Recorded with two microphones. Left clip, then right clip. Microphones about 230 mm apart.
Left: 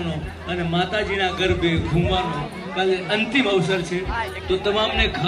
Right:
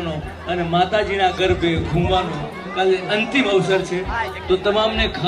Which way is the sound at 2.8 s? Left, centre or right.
Centre.